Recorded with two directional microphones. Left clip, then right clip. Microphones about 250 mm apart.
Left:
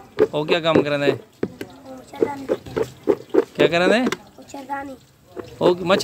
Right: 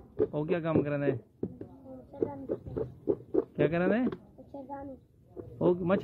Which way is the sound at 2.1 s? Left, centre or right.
Left.